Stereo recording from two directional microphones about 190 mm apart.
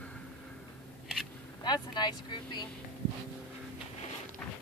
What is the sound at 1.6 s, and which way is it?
Speech, 20° left (ahead or behind).